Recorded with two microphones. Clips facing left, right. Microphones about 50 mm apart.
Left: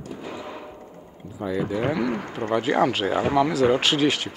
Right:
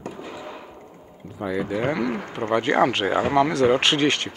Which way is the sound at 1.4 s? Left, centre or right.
Centre.